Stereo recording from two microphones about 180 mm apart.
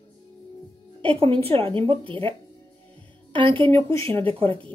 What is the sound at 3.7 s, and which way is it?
Speech, 15° left (ahead or behind).